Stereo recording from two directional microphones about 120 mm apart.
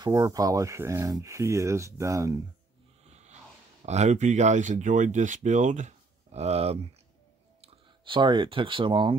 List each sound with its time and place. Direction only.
0.0 s speech: 25° right (ahead or behind)
3.1 s a sound: 65° right (ahead or behind)
3.8 s speech: 70° right (ahead or behind)
7.6 s speech: 40° right (ahead or behind)